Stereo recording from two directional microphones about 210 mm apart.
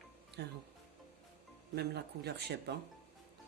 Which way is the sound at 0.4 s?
55° right (ahead or behind).